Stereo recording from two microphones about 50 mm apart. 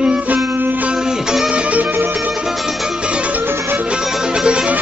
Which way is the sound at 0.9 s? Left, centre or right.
Centre.